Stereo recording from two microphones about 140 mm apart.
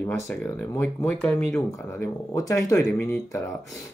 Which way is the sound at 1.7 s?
20° left (ahead or behind).